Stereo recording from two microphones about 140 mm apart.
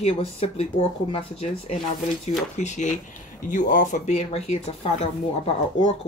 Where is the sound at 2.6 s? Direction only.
55° left (ahead or behind).